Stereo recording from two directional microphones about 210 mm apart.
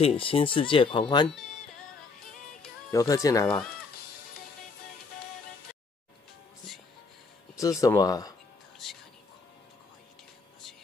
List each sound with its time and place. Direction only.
0.0 s speech: 25° left (ahead or behind)
2.9 s speech: 15° left (ahead or behind)
7.5 s speech: 15° left (ahead or behind)
8.8 s speech: centre (ahead or behind)